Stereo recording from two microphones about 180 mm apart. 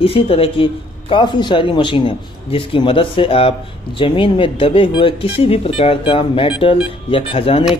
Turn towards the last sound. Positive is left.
turn(degrees=30)  # may be behind; listen again after turning